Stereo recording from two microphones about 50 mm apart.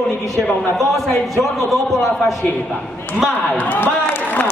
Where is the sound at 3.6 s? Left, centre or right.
Left.